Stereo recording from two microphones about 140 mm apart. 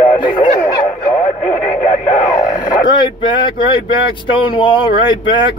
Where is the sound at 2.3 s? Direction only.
30° left (ahead or behind).